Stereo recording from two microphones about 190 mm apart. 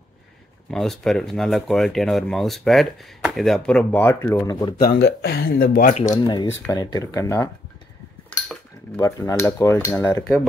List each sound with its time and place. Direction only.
0.7 s speech: centre (ahead or behind); by 4.7 s 20° left (ahead or behind)
4.8 s speech: 55° left (ahead or behind)
5.9 s speech: 35° left (ahead or behind)
6.2 s speech: 20° left (ahead or behind)
6.7 s cutlery: 20° left (ahead or behind)
8.3 s cutlery: 5° left (ahead or behind)